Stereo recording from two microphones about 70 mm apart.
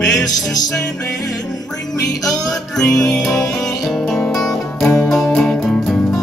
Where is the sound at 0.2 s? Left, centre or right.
Left.